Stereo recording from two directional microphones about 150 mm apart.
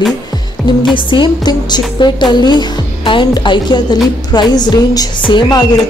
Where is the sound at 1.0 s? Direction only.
35° left (ahead or behind).